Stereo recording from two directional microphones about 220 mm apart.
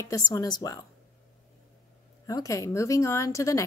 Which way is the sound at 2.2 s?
15° left (ahead or behind).